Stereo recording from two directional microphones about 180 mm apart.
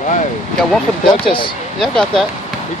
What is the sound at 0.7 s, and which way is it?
Speech, 5° left (ahead or behind).